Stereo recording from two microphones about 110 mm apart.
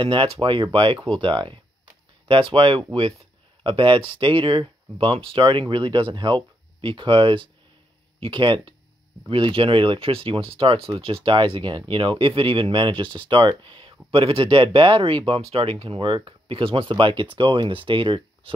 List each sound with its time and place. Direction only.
0.0 s speech: 50° right (ahead or behind)